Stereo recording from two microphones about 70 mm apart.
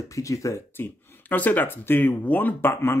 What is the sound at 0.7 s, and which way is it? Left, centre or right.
Speech, left.